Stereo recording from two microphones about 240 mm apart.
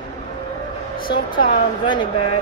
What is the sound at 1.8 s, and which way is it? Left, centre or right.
Speech, centre.